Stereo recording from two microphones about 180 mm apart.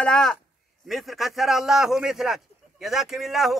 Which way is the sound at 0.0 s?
5° left (ahead or behind).